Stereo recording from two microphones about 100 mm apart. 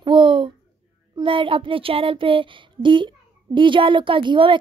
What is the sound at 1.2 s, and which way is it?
Child singing, 60° right (ahead or behind).